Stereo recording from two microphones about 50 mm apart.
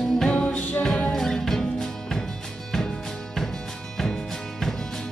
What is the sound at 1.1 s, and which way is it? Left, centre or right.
Music, centre.